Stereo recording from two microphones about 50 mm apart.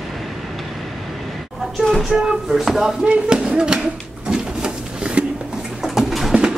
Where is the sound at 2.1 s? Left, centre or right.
Centre.